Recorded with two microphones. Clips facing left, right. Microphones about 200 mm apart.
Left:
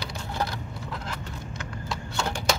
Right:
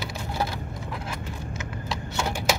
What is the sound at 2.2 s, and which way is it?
Typewriter, 20° right (ahead or behind).